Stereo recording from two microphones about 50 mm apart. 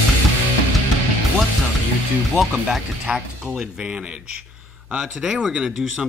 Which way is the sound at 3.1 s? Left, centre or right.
Right.